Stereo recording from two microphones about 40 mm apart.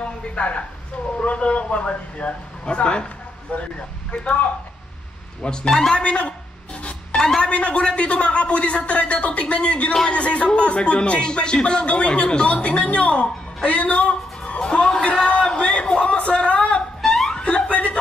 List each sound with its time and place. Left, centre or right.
0.0 s speech: left
3.5 s speech: left
5.4 s speech: centre
6.0 s speech: left
6.8 s cat: left
7.2 s a woman's voice: centre
7.4 s speech: left
14.6 s a sound: left
17.0 s laughter: centre
17.5 s chuckle: left